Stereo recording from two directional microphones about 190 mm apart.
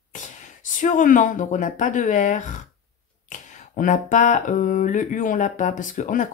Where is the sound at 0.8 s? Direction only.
40° left (ahead or behind).